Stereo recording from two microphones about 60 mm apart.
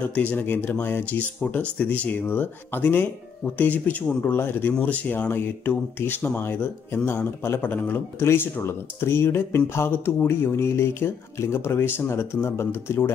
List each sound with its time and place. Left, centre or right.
0.1 s speech: left
0.5 s speech: left